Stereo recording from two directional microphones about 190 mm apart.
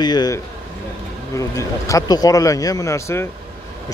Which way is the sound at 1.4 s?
15° left (ahead or behind).